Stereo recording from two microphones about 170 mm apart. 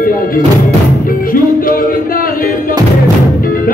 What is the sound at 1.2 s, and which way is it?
Music, 55° left (ahead or behind).